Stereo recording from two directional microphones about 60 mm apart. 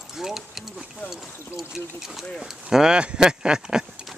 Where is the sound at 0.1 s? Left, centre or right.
Centre.